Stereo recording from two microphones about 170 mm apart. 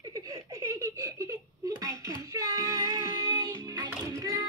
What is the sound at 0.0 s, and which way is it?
Giggle, 20° right (ahead or behind).